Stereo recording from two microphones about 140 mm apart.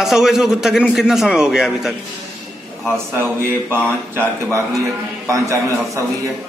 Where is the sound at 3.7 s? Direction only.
15° right (ahead or behind).